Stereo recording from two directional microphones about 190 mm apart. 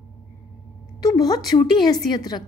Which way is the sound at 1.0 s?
20° left (ahead or behind).